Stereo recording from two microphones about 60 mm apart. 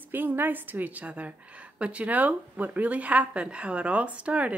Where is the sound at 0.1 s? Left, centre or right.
Right.